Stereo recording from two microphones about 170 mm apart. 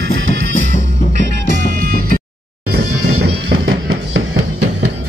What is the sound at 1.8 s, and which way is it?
Music, 60° right (ahead or behind).